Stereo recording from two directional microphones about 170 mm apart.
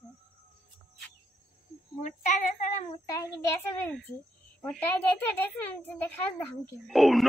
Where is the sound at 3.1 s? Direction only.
20° left (ahead or behind).